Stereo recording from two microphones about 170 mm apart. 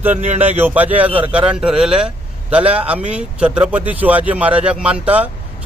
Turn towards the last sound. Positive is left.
turn(degrees=-10)  # may be behind; listen again after turning